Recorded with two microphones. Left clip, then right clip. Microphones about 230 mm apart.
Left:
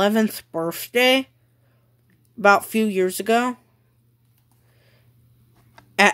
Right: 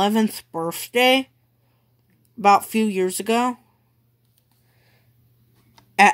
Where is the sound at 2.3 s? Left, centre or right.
Centre.